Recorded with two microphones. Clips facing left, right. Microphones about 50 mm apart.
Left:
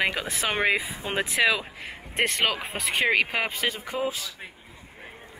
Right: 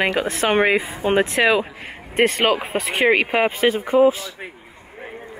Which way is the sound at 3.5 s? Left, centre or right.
Centre.